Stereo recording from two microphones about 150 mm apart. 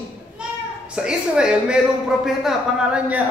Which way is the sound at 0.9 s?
5° right (ahead or behind).